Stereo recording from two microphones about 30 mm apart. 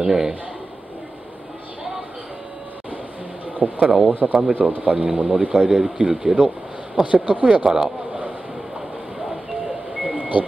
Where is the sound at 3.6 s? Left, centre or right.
Right.